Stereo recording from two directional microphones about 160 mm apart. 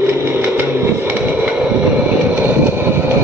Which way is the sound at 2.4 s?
10° right (ahead or behind).